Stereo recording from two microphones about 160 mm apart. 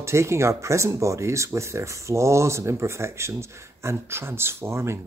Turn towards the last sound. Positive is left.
turn(degrees=-15)  # may be behind; listen again after turning